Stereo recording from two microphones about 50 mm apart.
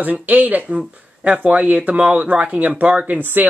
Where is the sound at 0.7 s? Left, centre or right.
Right.